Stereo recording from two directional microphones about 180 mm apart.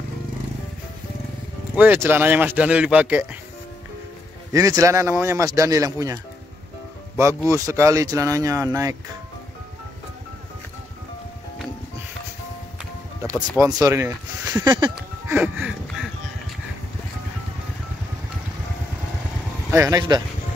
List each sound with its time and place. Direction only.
1.8 s speech: 10° right (ahead or behind)
4.5 s speech: 20° right (ahead or behind)
7.4 s speech: 15° right (ahead or behind)
13.7 s speech: 20° right (ahead or behind)
15.2 s music: 10° right (ahead or behind)
19.7 s speech: 20° right (ahead or behind)